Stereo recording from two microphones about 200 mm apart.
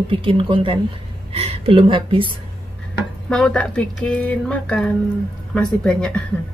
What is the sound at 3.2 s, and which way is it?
Speech, 5° left (ahead or behind).